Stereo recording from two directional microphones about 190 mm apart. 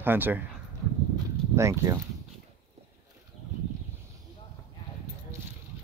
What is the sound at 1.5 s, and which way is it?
Speech, 15° right (ahead or behind).